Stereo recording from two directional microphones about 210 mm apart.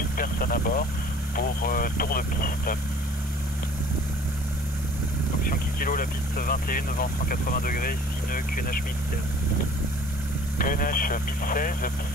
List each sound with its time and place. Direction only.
0.2 s speech: 45° left (ahead or behind)
5.8 s speech: 40° left (ahead or behind)
10.6 s speech: 40° left (ahead or behind)